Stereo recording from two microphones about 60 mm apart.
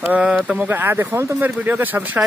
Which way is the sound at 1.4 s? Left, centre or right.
Right.